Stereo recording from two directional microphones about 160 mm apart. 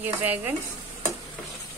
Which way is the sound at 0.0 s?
10° right (ahead or behind).